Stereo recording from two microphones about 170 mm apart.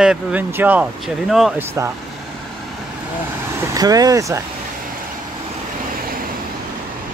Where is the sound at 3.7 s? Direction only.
20° right (ahead or behind).